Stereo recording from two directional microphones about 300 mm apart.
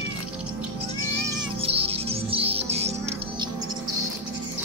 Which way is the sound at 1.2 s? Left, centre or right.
Centre.